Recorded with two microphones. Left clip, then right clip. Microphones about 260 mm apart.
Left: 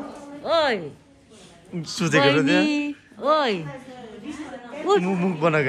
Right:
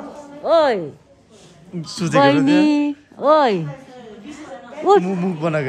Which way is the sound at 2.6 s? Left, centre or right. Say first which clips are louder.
Right 6 dB; right.